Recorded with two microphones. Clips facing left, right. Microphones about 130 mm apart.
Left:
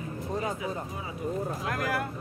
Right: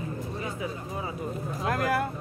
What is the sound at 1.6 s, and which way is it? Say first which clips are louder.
Speech: right 4 dB; 30° right (ahead or behind).